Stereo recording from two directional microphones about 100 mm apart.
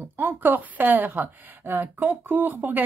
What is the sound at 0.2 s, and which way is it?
Speech, 20° right (ahead or behind).